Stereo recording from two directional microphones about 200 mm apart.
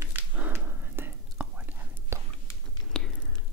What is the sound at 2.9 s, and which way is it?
Whispering, centre (ahead or behind).